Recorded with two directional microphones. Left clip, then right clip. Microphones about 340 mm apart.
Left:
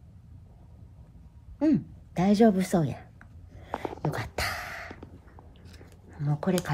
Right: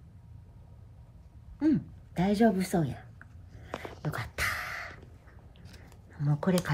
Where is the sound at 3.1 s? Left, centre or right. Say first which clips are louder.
Left 1 dB; left.